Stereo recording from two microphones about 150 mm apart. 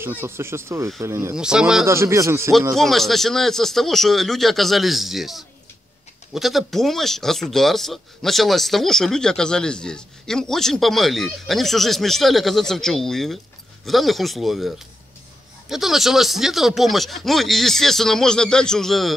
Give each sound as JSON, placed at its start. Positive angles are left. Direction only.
{"t": 0.0, "sound": "speech", "side_deg": -15}
{"t": 1.3, "sound": "speech", "side_deg": -5}
{"t": 1.9, "sound": "speech", "side_deg": -20}
{"t": 2.7, "sound": "speech", "side_deg": 0}
{"t": 15.7, "sound": "speech", "side_deg": 0}